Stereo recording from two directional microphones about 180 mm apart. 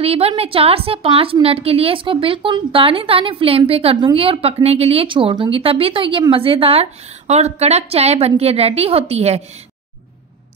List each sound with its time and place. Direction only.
0.0 s a woman's voice: 35° right (ahead or behind)